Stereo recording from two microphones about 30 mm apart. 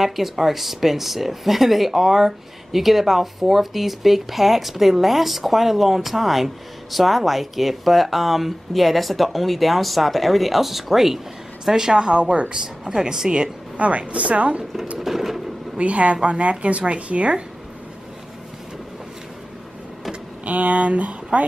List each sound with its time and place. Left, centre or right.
0.0 s speech: centre; by 12.2 s right
12.2 s speech: right
12.5 s speech: right
13.7 s speech: right
15.0 s drawer open or close: centre
15.8 s speech: right
20.4 s speech: right